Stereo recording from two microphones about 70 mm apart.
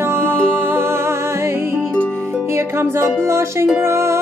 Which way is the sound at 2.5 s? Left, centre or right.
Right.